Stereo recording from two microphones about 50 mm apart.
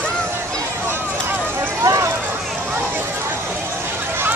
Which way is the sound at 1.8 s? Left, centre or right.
Right.